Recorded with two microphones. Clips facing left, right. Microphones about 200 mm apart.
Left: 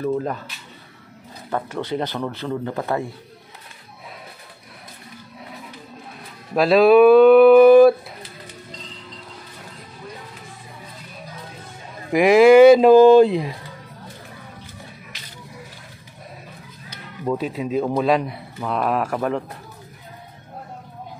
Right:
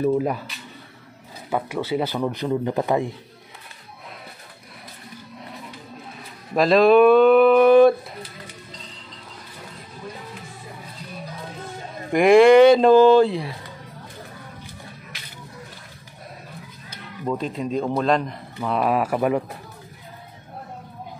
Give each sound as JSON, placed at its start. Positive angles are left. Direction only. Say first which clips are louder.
{"t": 0.0, "sound": "speech", "louder": "right 3 dB", "side_deg": -10}
{"t": 1.5, "sound": "speech", "louder": "right 1 dB", "side_deg": -10}
{"t": 6.5, "sound": "a sound", "louder": "left 2 dB", "side_deg": 5}
{"t": 12.1, "sound": "speech", "louder": "left 1 dB", "side_deg": 5}
{"t": 17.2, "sound": "speech", "louder": "left 2 dB", "side_deg": 5}